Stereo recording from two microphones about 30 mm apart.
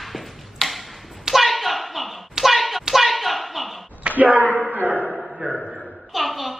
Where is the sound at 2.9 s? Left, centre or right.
Centre.